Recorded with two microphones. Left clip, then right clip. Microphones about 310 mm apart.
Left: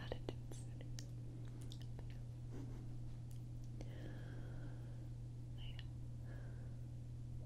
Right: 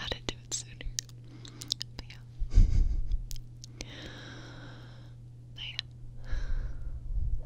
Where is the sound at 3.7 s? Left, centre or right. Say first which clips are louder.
Right 13 dB; right.